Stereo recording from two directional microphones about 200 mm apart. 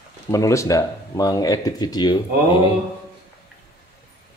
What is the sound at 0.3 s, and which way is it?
Speech, 15° left (ahead or behind).